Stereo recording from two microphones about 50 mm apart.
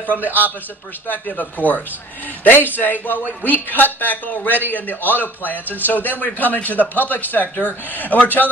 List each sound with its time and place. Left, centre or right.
1.0 s a man's voice: left